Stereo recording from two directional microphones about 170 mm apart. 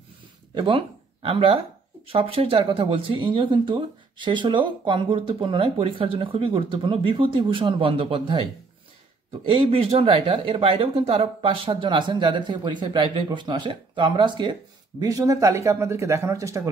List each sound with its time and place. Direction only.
0.6 s speech: 30° right (ahead or behind)